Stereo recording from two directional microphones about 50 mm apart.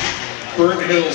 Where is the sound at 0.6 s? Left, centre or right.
Centre.